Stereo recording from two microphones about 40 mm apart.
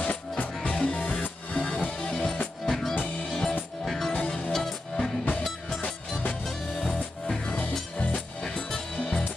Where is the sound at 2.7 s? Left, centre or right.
Centre.